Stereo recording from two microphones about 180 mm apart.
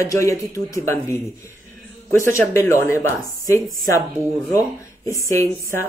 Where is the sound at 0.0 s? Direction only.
15° left (ahead or behind).